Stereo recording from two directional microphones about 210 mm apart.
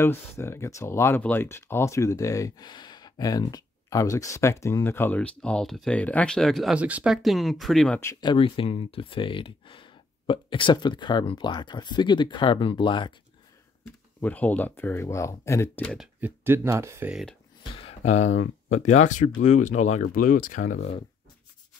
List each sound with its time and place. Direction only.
0.0 s speech: 10° left (ahead or behind)
14.2 s speech: 5° left (ahead or behind)
16.2 s speech: 10° right (ahead or behind)
17.6 s a sound: 25° left (ahead or behind)
18.7 s speech: 35° left (ahead or behind)